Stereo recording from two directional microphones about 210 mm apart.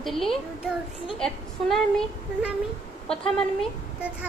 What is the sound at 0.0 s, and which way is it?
A woman's voice, centre (ahead or behind).